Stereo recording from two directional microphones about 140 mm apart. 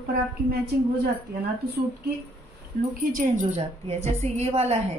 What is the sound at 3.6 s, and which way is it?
A woman's voice, 50° right (ahead or behind).